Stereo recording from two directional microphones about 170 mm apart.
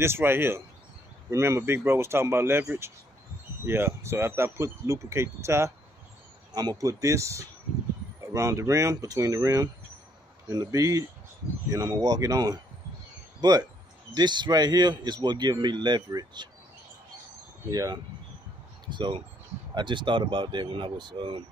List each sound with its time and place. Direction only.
0.0 s speech: 15° right (ahead or behind)
17.6 s speech: 25° right (ahead or behind)